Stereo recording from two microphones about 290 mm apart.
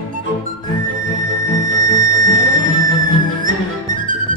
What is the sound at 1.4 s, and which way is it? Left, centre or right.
Music, right.